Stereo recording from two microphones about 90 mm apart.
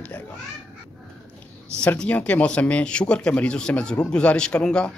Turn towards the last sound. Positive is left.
turn(degrees=10)  # may be behind; listen again after turning